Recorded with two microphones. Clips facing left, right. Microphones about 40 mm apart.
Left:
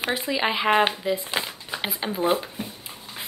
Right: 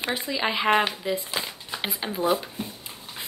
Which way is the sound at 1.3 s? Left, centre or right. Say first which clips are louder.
Left 3 dB; left.